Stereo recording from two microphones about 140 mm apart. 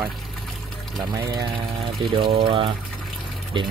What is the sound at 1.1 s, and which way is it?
Speech, 25° right (ahead or behind).